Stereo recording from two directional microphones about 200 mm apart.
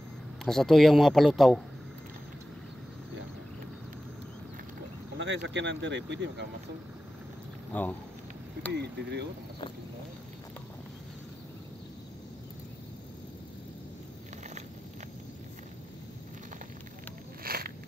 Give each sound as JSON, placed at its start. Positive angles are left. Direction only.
{"t": 0.5, "sound": "speech", "side_deg": 0}
{"t": 5.1, "sound": "speech", "side_deg": -60}
{"t": 7.7, "sound": "speech", "side_deg": 10}
{"t": 8.7, "sound": "speech", "side_deg": -55}
{"t": 17.4, "sound": "a sound", "side_deg": -50}